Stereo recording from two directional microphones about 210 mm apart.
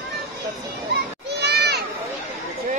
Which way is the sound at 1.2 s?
55° right (ahead or behind).